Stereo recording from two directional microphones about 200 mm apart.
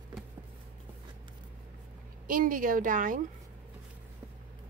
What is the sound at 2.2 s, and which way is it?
Speech, 45° right (ahead or behind).